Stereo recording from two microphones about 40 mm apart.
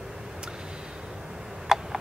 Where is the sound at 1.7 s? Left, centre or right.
Centre.